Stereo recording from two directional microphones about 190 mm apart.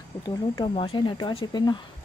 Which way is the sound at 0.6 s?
25° left (ahead or behind).